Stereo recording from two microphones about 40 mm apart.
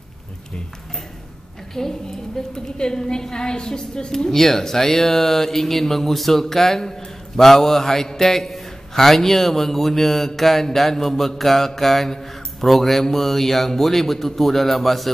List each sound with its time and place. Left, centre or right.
1.8 s a woman's voice: centre
4.3 s speech: centre